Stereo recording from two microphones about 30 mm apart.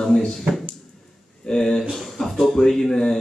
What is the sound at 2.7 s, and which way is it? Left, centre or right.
Speech, centre.